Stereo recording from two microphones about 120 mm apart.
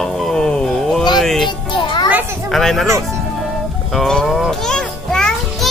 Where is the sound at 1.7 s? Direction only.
40° left (ahead or behind).